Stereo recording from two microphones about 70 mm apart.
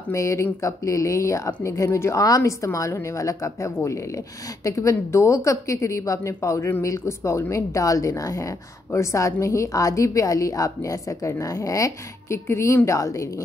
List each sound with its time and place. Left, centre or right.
0.1 s a woman's voice: left